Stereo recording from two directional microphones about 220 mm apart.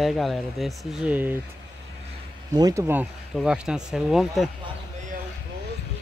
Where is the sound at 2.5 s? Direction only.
15° right (ahead or behind); by 4.4 s centre (ahead or behind).